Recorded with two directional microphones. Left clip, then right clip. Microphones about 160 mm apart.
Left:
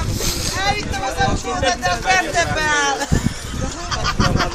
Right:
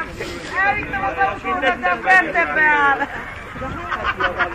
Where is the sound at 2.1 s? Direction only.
90° left.